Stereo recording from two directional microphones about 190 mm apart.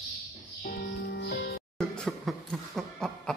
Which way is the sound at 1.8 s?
Centre (ahead or behind).